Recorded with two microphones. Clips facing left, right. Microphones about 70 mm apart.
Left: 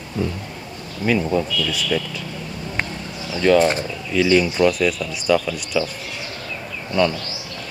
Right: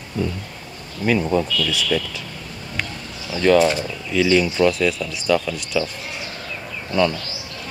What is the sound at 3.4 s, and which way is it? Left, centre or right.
Speech, centre.